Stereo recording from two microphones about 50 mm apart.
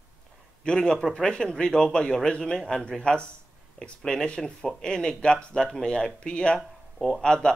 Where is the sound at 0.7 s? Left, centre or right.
Centre.